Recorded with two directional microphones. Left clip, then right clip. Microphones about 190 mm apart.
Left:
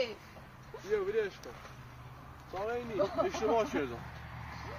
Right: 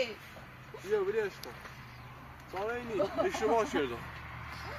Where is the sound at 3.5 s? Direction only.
45° left (ahead or behind).